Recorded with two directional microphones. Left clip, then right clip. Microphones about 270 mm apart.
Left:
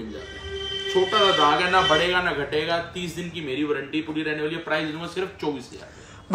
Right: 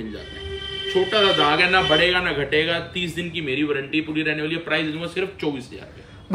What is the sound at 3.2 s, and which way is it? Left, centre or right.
A man's voice, left.